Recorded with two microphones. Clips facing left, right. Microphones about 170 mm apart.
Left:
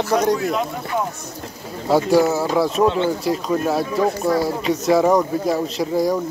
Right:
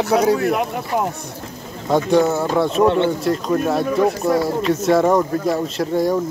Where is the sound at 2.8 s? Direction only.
60° right (ahead or behind).